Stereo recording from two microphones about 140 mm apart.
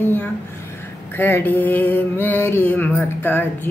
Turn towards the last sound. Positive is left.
turn(degrees=15)  # may be behind; listen again after turning